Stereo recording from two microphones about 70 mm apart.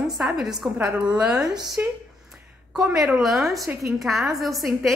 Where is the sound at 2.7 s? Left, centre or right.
Centre.